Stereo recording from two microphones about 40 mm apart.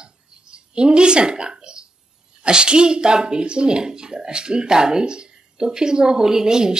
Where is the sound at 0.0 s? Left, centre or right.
Right.